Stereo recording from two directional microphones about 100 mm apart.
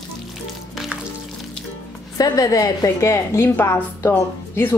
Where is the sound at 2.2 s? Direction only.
35° left (ahead or behind).